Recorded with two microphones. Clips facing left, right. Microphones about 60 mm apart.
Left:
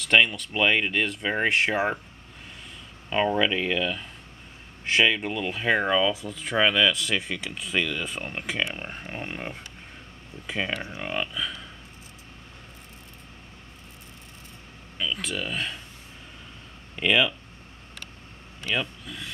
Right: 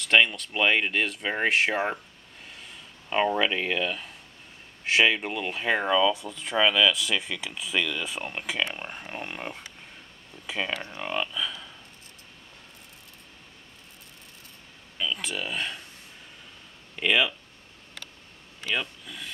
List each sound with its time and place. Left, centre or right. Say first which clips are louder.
0.0 s speech: left 1 dB; centre
3.1 s speech: left 1 dB; centre
5.8 s speech: even; centre
10.8 s speech: left 2 dB; centre
11.1 s speech: right 1 dB; centre
15.0 s speech: left 1 dB; centre
16.9 s speech: left 2 dB; centre
18.7 s speech: left 2 dB; centre